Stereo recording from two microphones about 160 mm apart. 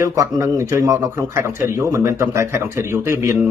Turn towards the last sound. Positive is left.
turn(degrees=-20)  # may be behind; listen again after turning